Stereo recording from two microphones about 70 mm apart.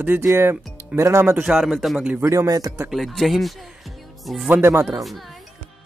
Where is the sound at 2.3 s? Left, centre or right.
Right.